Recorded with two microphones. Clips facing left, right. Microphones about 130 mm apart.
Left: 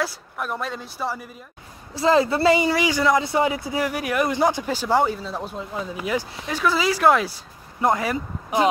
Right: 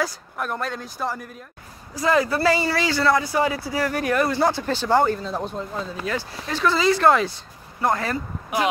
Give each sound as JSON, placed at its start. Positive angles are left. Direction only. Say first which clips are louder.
{"t": 0.0, "sound": "speech", "louder": "right 1 dB", "side_deg": 0}
{"t": 2.0, "sound": "speech", "louder": "left 2 dB", "side_deg": 25}
{"t": 3.9, "sound": "speech", "louder": "right 1 dB", "side_deg": 10}